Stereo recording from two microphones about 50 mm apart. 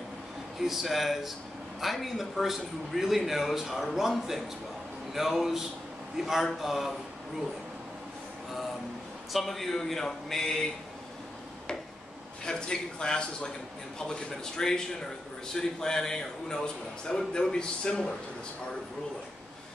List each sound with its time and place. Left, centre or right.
0.6 s a man's voice: centre
9.3 s a man's voice: centre
12.4 s a man's voice: centre